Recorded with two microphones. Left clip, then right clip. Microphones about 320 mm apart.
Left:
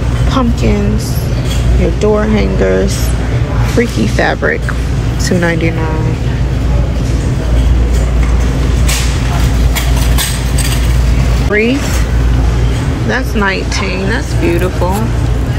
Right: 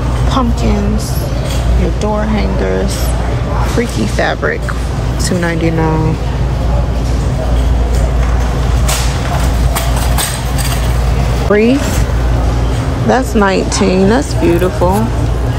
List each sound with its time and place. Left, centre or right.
0.3 s speech: centre
2.0 s speech: centre
4.2 s speech: centre
11.5 s speech: centre
13.1 s speech: centre